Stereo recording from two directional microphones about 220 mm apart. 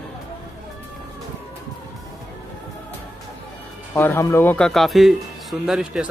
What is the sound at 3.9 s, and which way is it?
Speech, 10° left (ahead or behind).